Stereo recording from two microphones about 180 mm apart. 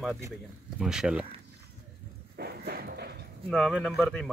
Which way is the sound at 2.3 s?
60° right (ahead or behind).